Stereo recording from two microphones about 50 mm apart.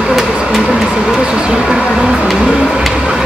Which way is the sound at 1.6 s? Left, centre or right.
Centre.